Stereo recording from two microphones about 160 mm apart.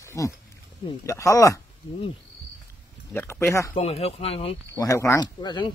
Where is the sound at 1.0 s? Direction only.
20° left (ahead or behind).